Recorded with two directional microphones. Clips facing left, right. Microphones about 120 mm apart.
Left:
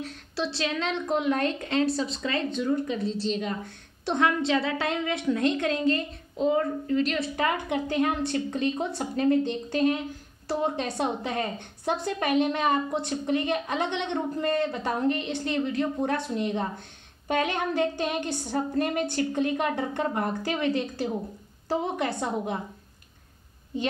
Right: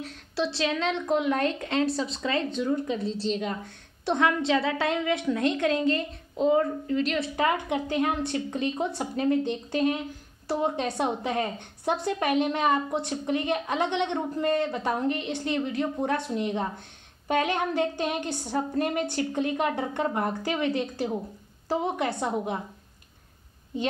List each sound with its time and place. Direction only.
0.4 s a woman's voice: 20° right (ahead or behind)
1.1 s speech: 25° left (ahead or behind)
1.4 s speech: 20° right (ahead or behind)
5.0 s a woman's voice: 15° right (ahead or behind)